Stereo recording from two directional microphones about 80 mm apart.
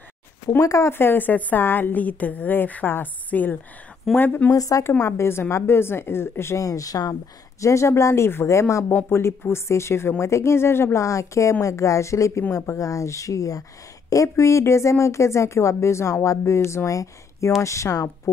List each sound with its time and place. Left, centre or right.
0.7 s speech: left
0.9 s a woman's voice: left
4.5 s speech: left
5.0 s speech: left
7.6 s speech: left